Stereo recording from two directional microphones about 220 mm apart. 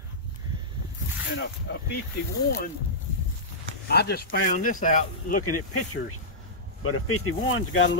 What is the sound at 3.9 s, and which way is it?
Speech, 45° left (ahead or behind).